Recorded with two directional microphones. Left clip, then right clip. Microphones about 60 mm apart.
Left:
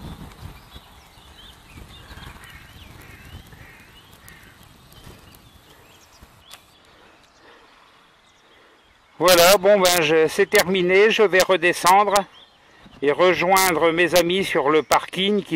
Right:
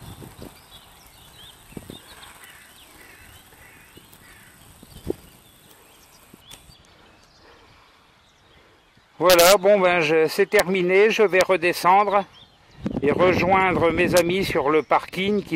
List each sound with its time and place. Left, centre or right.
2.0 s horse: right
9.2 s speech: centre